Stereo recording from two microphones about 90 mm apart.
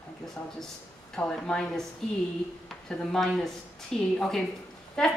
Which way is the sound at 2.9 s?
5° left (ahead or behind).